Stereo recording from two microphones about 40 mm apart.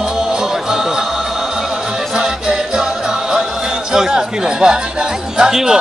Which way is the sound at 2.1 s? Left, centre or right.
Centre.